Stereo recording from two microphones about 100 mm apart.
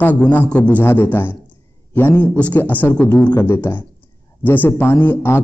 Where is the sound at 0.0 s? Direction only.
15° left (ahead or behind).